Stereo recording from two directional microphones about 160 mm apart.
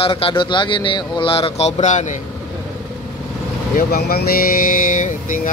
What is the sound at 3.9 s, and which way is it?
Speech, 75° left (ahead or behind).